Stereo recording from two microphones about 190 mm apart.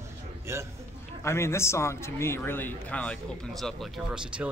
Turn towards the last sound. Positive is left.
turn(degrees=-5)  # may be behind; listen again after turning